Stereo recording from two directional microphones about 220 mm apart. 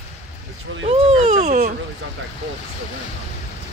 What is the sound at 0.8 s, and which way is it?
Speech, 30° right (ahead or behind).